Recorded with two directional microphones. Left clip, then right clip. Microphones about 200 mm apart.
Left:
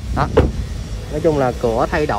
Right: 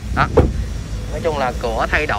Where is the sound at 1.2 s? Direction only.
35° left (ahead or behind).